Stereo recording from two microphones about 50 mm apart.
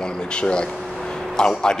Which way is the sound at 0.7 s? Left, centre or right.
Centre.